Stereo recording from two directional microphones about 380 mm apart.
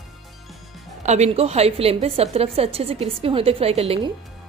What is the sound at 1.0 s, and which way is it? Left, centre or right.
A woman's voice, centre.